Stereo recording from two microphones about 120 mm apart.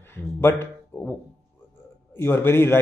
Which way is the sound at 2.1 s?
20° left (ahead or behind).